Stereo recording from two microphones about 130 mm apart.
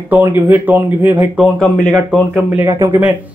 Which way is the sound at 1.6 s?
5° left (ahead or behind).